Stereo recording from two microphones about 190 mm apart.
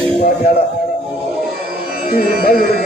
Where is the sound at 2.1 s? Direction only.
50° left (ahead or behind).